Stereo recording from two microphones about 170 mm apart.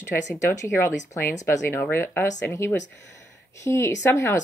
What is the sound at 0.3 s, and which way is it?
Speech, 15° left (ahead or behind).